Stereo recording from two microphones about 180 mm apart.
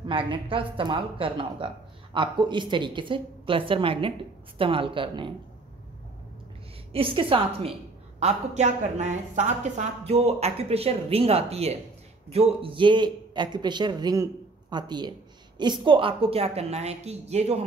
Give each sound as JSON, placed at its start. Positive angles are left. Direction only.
{"t": 0.0, "sound": "a man's voice", "side_deg": -30}
{"t": 6.9, "sound": "a man's voice", "side_deg": -30}